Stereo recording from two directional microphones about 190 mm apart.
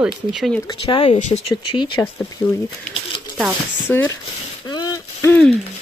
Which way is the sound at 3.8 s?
15° left (ahead or behind).